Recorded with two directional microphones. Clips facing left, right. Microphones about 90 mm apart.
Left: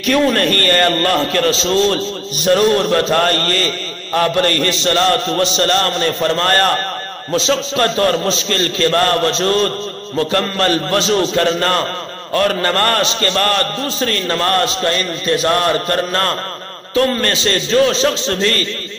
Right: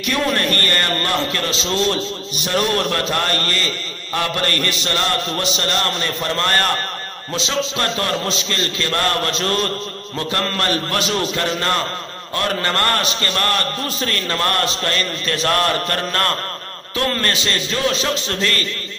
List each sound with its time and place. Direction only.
0.0 s a man's voice: 40° left (ahead or behind)